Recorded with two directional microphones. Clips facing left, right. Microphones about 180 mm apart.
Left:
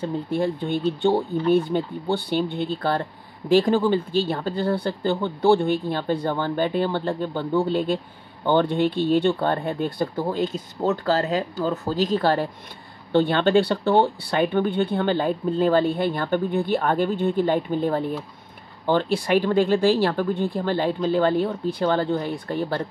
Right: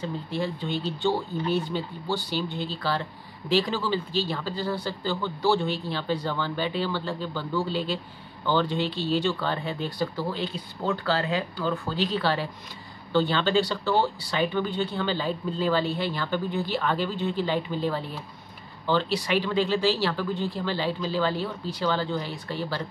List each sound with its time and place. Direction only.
0.0 s speech: 50° left (ahead or behind)
13.1 s speech: 55° left (ahead or behind)